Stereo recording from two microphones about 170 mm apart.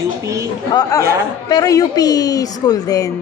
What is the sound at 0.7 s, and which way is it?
A woman's voice, 25° left (ahead or behind).